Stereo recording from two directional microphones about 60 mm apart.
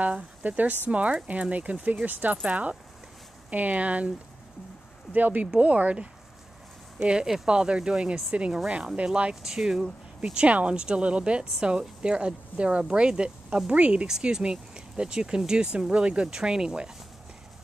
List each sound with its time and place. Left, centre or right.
0.0 s speech: right
5.1 s speech: right; by 16.9 s centre